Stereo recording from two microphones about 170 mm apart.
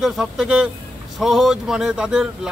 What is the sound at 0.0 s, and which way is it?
Speech, centre (ahead or behind).